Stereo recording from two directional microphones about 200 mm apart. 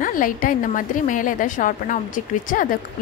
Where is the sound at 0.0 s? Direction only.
40° left (ahead or behind).